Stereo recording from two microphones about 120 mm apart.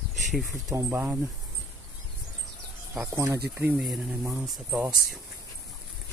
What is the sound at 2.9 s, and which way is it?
Speech, 20° right (ahead or behind).